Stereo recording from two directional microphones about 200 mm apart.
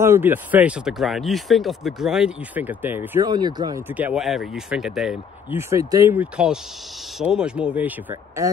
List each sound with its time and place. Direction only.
0.0 s speech: 10° right (ahead or behind)
3.3 s speech: 20° right (ahead or behind)
3.9 s speech: 5° right (ahead or behind)